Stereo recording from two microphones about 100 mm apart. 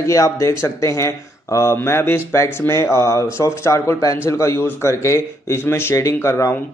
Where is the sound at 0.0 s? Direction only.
35° left (ahead or behind).